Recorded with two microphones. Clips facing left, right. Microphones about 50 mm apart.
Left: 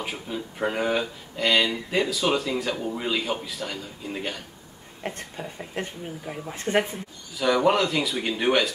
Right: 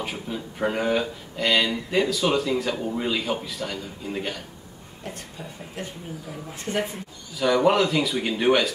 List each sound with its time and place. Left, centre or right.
0.0 s speech: centre
5.1 s speech: left
7.3 s speech: centre